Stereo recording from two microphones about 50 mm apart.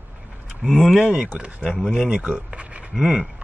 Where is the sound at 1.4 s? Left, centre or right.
Right.